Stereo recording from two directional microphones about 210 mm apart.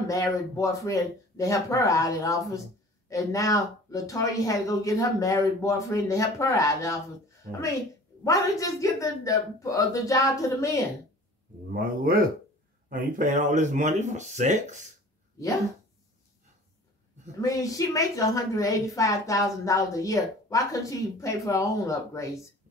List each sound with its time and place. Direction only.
0.1 s a woman's voice: 15° left (ahead or behind)
8.2 s a woman's voice: 15° left (ahead or behind)
11.7 s speech: 45° right (ahead or behind)
17.4 s a woman's voice: 15° left (ahead or behind)